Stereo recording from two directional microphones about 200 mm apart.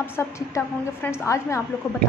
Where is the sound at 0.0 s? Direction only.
10° left (ahead or behind).